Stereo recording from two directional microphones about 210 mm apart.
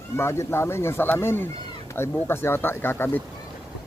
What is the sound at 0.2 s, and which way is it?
Speech, 10° left (ahead or behind).